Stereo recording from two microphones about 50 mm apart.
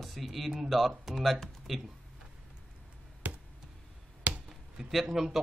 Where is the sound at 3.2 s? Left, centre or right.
Right.